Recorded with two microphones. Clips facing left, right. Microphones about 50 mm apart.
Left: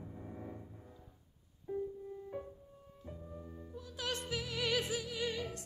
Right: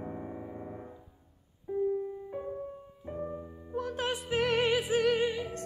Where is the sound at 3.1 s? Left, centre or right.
Right.